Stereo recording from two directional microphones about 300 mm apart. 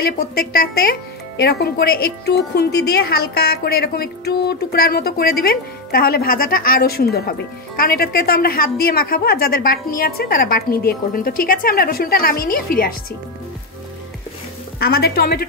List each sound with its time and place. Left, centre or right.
0.0 s speech: left
14.8 s speech: left